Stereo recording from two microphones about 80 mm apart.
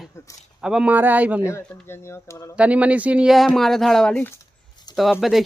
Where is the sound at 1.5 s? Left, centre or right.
Left.